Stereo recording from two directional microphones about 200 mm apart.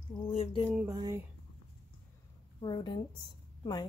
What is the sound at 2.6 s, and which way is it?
Speech, 20° left (ahead or behind).